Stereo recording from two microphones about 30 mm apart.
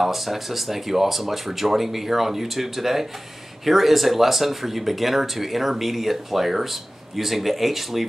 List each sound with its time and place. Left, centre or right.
0.0 s speech: centre